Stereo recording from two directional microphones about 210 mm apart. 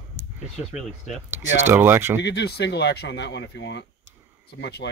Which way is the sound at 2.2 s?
55° left (ahead or behind).